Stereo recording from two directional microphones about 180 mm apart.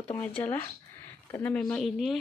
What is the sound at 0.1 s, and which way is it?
Speech, 10° left (ahead or behind).